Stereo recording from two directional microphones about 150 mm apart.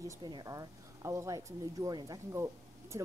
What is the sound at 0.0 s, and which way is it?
A woman's voice, 20° right (ahead or behind).